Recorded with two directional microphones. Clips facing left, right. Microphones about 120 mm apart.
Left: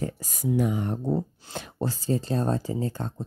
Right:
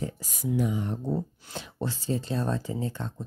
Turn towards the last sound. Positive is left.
turn(degrees=40)  # may be behind; listen again after turning